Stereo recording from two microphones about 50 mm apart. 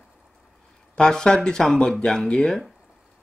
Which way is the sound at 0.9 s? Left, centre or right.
Centre.